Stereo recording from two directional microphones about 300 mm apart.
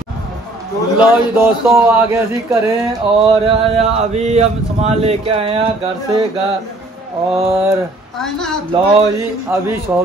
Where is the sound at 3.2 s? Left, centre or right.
Centre.